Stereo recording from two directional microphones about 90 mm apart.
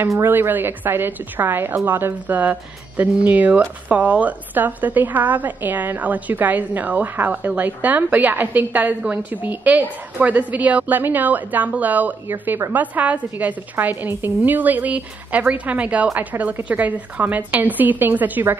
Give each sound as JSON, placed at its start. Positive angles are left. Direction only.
{"t": 0.2, "sound": "a woman's voice", "side_deg": -25}